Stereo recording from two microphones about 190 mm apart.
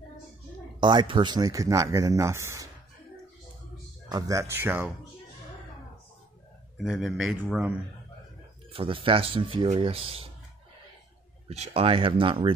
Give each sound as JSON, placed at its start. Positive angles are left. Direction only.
{"t": 0.7, "sound": "speech", "side_deg": -25}
{"t": 4.1, "sound": "speech", "side_deg": -15}
{"t": 6.8, "sound": "a man's voice", "side_deg": 0}
{"t": 8.7, "sound": "speech", "side_deg": -25}
{"t": 11.4, "sound": "speech", "side_deg": -35}